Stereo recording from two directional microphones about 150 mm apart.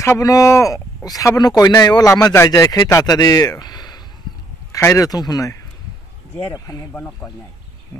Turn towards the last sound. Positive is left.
turn(degrees=15)  # may be behind; listen again after turning